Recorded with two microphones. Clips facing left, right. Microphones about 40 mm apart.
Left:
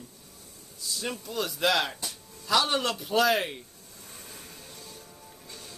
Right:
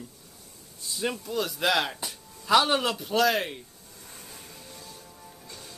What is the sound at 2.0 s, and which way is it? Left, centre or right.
Music, centre.